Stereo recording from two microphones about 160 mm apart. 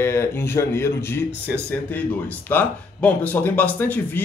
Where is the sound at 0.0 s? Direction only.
15° left (ahead or behind).